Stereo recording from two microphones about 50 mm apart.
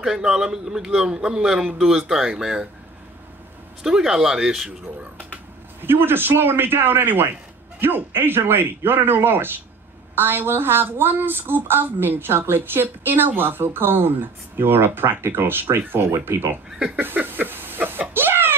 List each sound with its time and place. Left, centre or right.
0.0 s a man's voice: centre
3.8 s a man's voice: centre
5.8 s speech: right
17.0 s a sound: right